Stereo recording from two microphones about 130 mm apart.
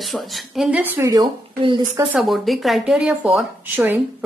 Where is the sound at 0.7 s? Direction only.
15° right (ahead or behind).